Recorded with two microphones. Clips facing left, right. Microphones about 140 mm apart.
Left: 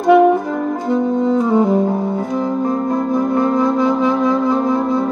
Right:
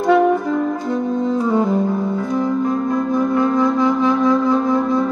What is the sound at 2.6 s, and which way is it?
Music, 35° left (ahead or behind).